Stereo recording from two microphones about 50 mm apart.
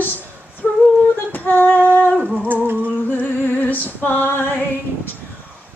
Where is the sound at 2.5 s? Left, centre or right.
Right.